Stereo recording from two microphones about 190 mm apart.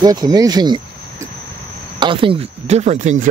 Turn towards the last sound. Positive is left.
turn(degrees=-35)  # may be behind; listen again after turning